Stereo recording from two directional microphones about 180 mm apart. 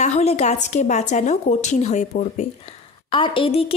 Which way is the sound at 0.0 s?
40° left (ahead or behind).